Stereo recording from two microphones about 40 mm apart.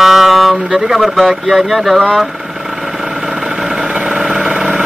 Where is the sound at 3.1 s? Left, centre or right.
Centre.